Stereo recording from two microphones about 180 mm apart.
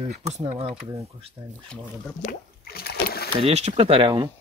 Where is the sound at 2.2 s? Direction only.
60° left (ahead or behind).